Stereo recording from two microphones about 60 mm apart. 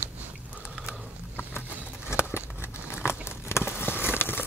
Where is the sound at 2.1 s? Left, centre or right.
Left.